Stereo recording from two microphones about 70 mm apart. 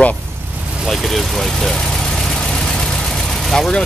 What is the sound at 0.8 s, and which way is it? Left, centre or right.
Vehicle, centre.